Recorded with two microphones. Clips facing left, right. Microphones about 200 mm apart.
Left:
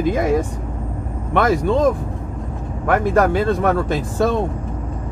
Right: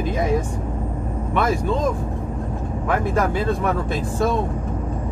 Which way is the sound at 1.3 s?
85° left.